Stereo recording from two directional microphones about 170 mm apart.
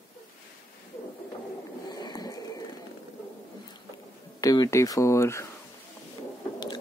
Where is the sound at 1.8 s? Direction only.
25° left (ahead or behind).